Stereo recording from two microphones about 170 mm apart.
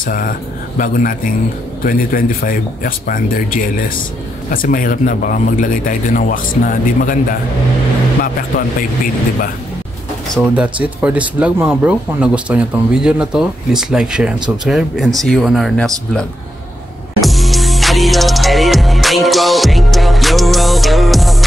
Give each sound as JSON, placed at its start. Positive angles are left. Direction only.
{"t": 0.0, "sound": "a man's voice", "side_deg": 55}
{"t": 4.5, "sound": "a man's voice", "side_deg": 55}
{"t": 10.3, "sound": "speech", "side_deg": -5}
{"t": 17.2, "sound": "music", "side_deg": 0}